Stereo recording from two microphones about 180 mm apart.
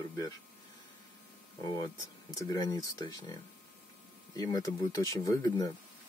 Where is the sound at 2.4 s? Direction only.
20° left (ahead or behind).